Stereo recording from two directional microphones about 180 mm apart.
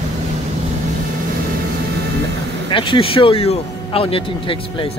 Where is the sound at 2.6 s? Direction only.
30° left (ahead or behind).